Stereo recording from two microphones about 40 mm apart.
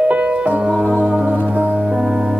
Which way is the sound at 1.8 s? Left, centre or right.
Centre.